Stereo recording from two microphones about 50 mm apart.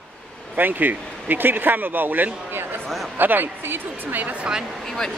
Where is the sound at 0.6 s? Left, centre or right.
Right.